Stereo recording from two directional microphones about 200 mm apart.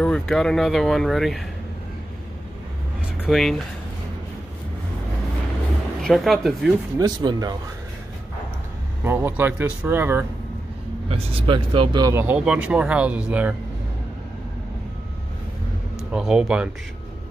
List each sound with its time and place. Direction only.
0.0 s speech: 5° left (ahead or behind)
3.2 s speech: centre (ahead or behind)
6.0 s speech: centre (ahead or behind)
7.0 s speech: 20° right (ahead or behind)
9.0 s speech: 10° right (ahead or behind)
11.1 s speech: 30° right (ahead or behind); by 13.6 s 5° right (ahead or behind)
16.1 s speech: 5° right (ahead or behind)